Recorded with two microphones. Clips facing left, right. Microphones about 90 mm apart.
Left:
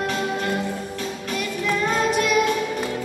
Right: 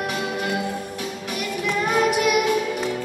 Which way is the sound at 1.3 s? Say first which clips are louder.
Left 1 dB; 15° right (ahead or behind).